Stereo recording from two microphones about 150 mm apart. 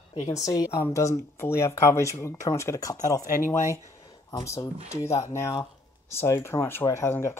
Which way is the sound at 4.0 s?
25° left (ahead or behind).